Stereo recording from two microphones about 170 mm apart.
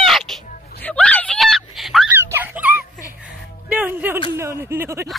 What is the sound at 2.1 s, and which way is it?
Music, 10° right (ahead or behind).